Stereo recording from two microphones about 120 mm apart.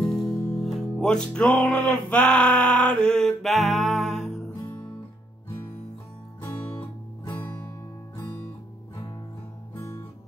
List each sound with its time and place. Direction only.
0.0 s music: centre (ahead or behind)
7.4 s music: 20° left (ahead or behind)